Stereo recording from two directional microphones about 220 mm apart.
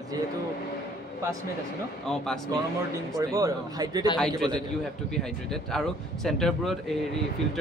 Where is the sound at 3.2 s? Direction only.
15° right (ahead or behind).